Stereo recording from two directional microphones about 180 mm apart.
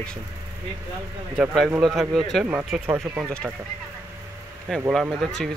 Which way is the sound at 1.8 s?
Centre (ahead or behind).